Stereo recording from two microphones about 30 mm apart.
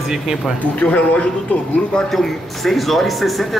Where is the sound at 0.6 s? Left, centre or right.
Left.